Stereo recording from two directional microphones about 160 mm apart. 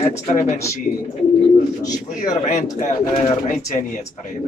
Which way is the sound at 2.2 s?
55° left (ahead or behind).